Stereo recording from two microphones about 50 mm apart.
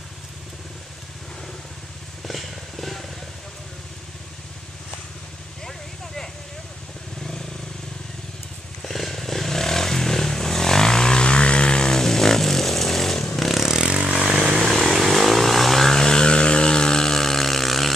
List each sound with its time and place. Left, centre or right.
2.2 s vehicle: centre
5.7 s a sound: centre
8.8 s vehicle: centre
13.4 s motorcycle: centre
13.7 s vehicle: centre
14.6 s vehicle: centre